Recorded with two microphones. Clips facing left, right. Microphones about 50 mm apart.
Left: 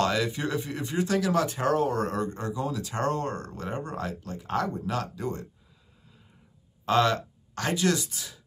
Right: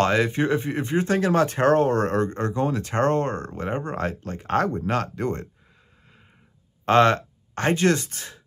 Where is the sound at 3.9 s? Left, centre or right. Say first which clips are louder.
Right 6 dB; right.